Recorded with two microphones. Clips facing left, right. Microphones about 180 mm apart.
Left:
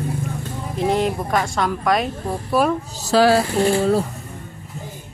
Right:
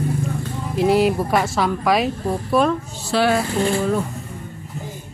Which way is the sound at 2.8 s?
40° left (ahead or behind).